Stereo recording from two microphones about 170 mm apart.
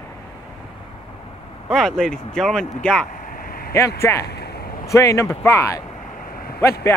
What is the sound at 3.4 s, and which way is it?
Vehicle, 60° left (ahead or behind).